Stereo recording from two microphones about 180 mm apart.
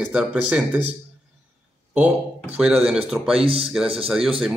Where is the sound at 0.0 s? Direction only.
5° right (ahead or behind).